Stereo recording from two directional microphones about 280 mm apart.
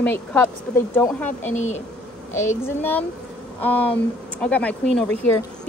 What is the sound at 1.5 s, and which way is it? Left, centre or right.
Speech, left.